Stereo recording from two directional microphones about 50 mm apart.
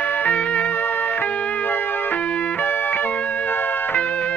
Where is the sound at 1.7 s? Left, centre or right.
Left.